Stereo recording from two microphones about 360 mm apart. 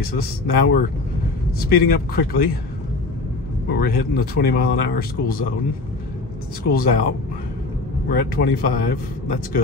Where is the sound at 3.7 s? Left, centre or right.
Left.